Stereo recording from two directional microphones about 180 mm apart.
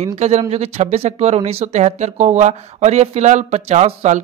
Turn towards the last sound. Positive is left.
turn(degrees=-40)  # may be behind; listen again after turning